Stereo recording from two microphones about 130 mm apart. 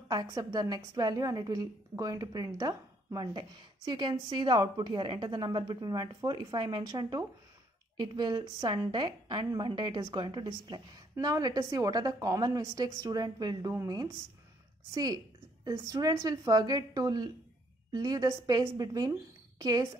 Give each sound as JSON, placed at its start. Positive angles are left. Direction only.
{"t": 0.1, "sound": "a woman's voice", "side_deg": -30}
{"t": 15.6, "sound": "a woman's voice", "side_deg": -30}